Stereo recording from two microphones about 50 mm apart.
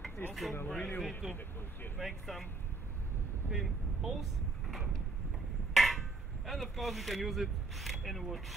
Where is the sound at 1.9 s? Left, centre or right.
Centre.